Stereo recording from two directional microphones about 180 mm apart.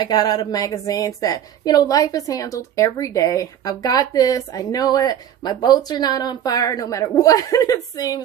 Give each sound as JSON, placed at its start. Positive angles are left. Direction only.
{"t": 0.0, "sound": "a woman's voice", "side_deg": 20}